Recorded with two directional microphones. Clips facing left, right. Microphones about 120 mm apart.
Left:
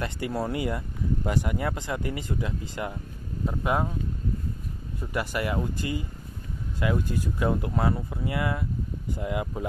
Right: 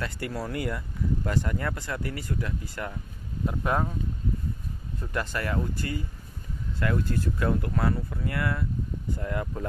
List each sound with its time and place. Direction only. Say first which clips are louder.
0.0 s speech: left 3 dB; 20° left (ahead or behind)
3.4 s speech: left 1 dB; 10° left (ahead or behind)
5.1 s speech: left 2 dB; 10° left (ahead or behind)